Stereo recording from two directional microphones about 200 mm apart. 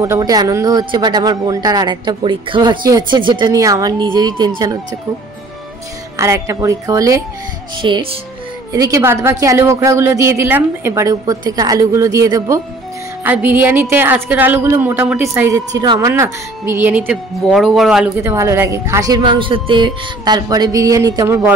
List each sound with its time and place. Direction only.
0.0 s speech: 15° right (ahead or behind)
6.1 s a woman's voice: 15° right (ahead or behind)
7.8 s speech: 25° right (ahead or behind)
8.7 s a woman's voice: 15° right (ahead or behind)